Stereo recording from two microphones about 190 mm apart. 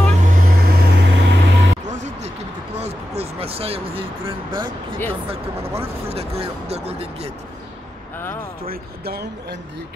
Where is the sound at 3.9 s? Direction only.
30° right (ahead or behind).